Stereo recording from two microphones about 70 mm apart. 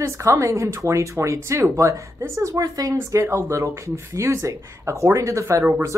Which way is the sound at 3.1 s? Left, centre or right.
Right.